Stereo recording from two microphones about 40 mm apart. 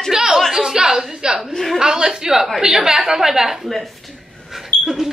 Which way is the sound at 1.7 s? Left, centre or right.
Centre.